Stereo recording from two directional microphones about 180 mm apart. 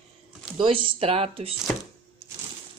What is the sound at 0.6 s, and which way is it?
Speech, 30° right (ahead or behind).